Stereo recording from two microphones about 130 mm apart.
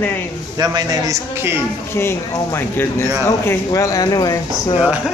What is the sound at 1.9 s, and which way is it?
Speech, 20° left (ahead or behind).